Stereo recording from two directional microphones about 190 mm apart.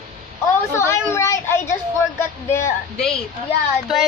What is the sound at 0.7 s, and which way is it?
A child's voice, 15° left (ahead or behind).